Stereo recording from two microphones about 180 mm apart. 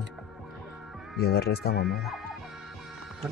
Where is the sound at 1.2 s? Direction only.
60° left (ahead or behind).